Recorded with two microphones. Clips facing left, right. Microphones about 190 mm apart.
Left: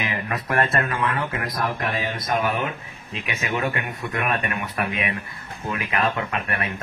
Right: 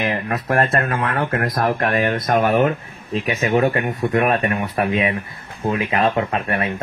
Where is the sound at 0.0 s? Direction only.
45° right (ahead or behind).